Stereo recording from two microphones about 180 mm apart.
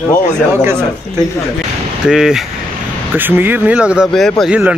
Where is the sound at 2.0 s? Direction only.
5° right (ahead or behind).